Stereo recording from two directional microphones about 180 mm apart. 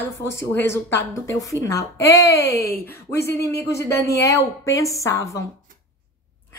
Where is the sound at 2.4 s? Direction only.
60° left (ahead or behind).